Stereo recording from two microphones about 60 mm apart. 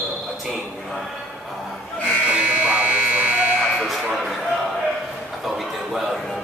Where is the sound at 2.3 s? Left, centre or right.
Right.